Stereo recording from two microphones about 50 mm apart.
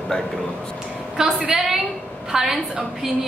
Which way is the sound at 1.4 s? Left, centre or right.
Centre.